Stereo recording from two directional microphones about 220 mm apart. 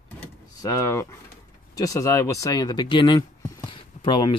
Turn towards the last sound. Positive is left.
turn(degrees=20)  # may be behind; listen again after turning